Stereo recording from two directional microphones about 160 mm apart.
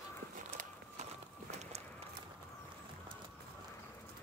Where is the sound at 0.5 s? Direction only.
45° right (ahead or behind).